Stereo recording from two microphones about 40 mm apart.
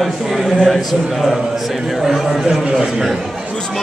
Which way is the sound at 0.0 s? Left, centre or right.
Centre.